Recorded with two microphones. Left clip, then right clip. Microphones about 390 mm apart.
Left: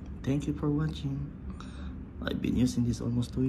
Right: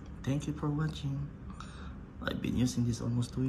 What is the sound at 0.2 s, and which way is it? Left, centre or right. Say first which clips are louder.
Speech: left 4 dB; centre.